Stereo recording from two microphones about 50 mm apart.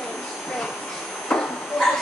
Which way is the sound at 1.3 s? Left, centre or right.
Centre.